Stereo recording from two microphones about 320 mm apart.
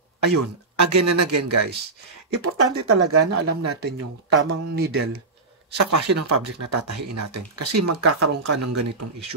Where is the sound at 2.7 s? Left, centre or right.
Right.